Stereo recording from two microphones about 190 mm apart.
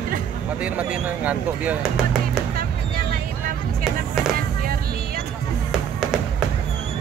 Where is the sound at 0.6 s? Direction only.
5° right (ahead or behind).